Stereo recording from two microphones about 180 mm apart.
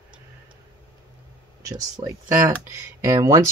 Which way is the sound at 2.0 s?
30° right (ahead or behind).